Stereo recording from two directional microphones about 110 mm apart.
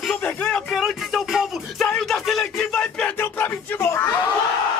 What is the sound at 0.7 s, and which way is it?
Music, 5° right (ahead or behind).